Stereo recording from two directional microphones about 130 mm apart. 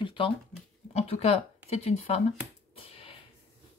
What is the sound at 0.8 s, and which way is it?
Speech, 50° left (ahead or behind).